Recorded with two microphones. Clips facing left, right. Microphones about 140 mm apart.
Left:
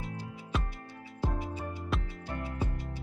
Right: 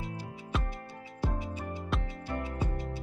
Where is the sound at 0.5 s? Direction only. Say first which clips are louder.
Even; centre (ahead or behind).